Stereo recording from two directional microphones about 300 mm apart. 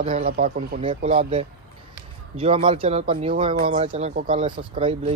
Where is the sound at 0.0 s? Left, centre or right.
Right.